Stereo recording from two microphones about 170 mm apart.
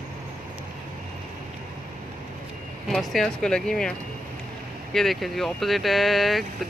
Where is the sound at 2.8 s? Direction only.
Centre (ahead or behind).